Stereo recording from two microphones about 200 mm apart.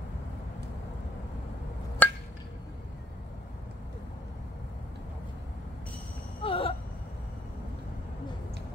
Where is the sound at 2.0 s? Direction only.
5° left (ahead or behind).